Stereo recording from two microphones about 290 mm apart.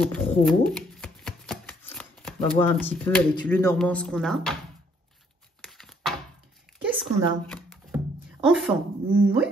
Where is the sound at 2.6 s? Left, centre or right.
Centre.